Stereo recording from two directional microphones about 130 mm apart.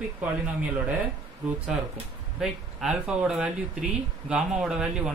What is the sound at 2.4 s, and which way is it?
Speech, 5° right (ahead or behind).